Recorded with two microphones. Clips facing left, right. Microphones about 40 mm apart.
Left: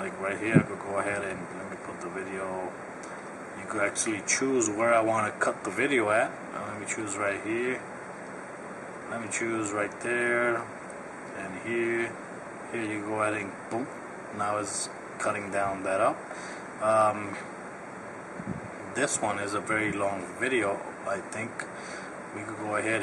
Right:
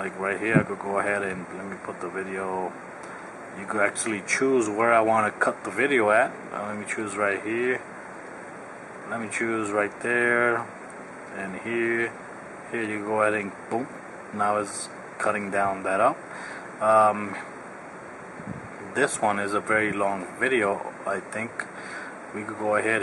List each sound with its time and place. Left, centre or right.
0.0 s speech: centre
3.7 s speech: centre
9.1 s speech: centre
18.9 s speech: centre